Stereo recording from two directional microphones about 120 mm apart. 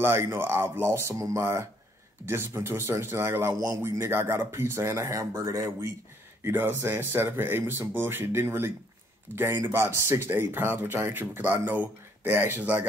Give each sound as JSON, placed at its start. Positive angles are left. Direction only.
{"t": 0.0, "sound": "speech", "side_deg": -20}
{"t": 3.8, "sound": "speech", "side_deg": -20}